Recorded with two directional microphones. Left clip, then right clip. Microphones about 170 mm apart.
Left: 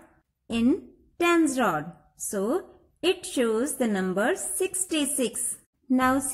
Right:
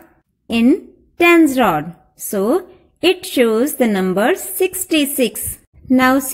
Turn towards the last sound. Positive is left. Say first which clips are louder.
# right 10 dB
turn(degrees=-20)  # may be behind; listen again after turning